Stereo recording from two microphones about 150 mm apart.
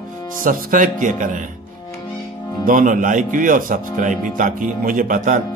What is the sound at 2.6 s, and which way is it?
A man's voice, 65° right (ahead or behind).